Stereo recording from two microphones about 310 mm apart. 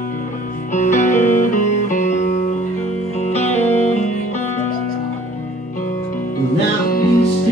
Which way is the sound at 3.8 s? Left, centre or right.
Left.